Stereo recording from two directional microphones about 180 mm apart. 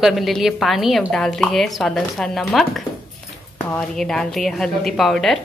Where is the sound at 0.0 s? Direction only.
Centre (ahead or behind).